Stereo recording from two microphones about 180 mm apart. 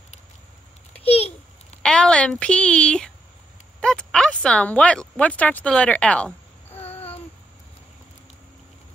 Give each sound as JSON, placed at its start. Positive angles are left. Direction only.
{"t": 1.0, "sound": "babbling", "side_deg": 35}
{"t": 1.8, "sound": "a woman's voice", "side_deg": 5}
{"t": 6.7, "sound": "babbling", "side_deg": 35}